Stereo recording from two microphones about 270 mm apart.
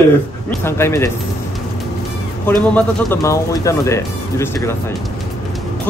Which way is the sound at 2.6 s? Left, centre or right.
Centre.